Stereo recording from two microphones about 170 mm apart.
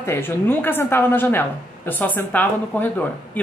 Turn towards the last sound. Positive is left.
turn(degrees=10)  # may be behind; listen again after turning